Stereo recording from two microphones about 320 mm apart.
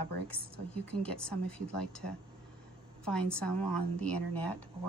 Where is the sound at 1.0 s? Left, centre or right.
Centre.